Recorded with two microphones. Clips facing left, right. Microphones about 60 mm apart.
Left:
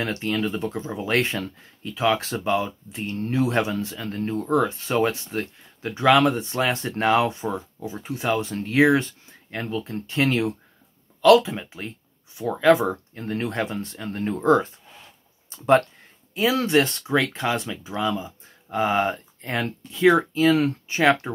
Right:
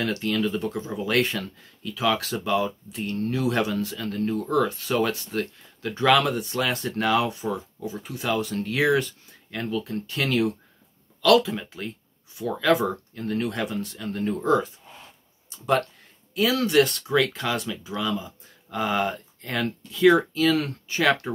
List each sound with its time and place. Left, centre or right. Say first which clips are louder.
0.0 s speech: even; left
6.2 s speech: left 4 dB; left